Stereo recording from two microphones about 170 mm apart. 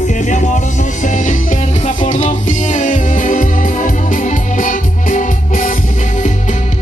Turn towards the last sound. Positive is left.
turn(degrees=50)  # may be behind; listen again after turning